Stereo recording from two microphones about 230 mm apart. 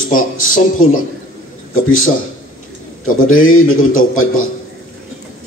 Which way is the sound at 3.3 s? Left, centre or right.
Left.